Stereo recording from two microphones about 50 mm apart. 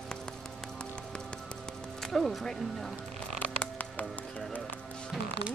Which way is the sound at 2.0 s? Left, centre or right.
Centre.